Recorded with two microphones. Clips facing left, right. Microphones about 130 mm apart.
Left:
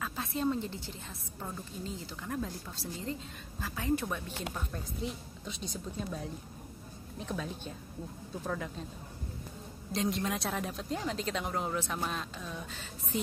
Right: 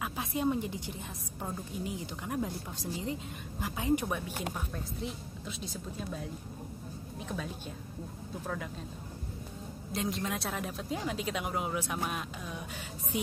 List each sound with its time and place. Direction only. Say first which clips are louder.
0.0 s a woman's voice: right 1 dB; 15° right (ahead or behind)
4.7 s speech: even; centre (ahead or behind)
7.2 s speech: left 1 dB; centre (ahead or behind)
9.9 s a woman's voice: left 2 dB; centre (ahead or behind)